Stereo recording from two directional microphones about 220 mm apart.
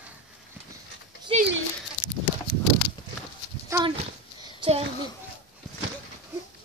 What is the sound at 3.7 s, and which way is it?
Speech, 10° right (ahead or behind).